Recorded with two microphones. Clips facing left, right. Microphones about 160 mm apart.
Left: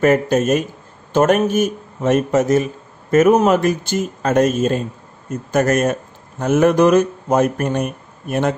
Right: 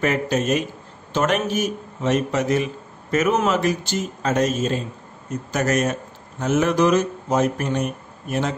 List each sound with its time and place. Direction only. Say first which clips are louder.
0.0 s speech: left 7 dB; 50° left (ahead or behind)